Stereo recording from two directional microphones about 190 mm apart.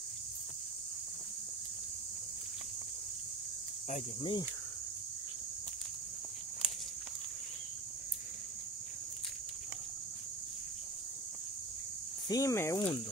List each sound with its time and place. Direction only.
3.9 s cricket: 25° left (ahead or behind)
12.3 s speech: 15° left (ahead or behind)